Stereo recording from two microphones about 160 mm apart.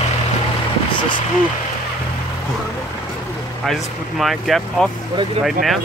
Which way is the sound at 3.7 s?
Centre (ahead or behind).